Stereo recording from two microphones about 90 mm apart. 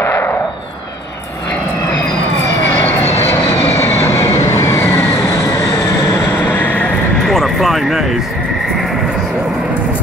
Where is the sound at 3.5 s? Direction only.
25° left (ahead or behind).